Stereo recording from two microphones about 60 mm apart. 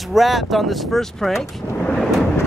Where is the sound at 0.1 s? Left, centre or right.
Centre.